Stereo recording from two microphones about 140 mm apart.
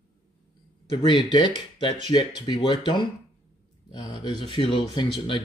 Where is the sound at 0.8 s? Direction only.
35° left (ahead or behind).